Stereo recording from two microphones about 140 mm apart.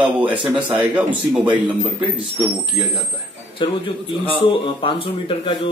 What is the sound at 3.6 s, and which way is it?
Speech, 40° left (ahead or behind).